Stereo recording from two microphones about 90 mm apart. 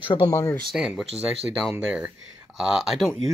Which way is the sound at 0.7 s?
5° right (ahead or behind).